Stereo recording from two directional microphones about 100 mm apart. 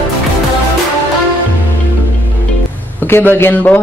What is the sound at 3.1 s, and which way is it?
Speech, 25° left (ahead or behind).